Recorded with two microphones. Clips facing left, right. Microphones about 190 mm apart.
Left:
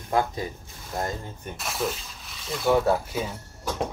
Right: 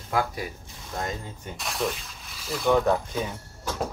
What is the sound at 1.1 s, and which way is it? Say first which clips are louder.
Speech: left 1 dB; 15° right (ahead or behind).